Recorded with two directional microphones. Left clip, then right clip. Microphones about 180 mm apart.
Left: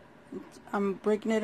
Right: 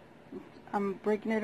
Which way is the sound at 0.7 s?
30° left (ahead or behind).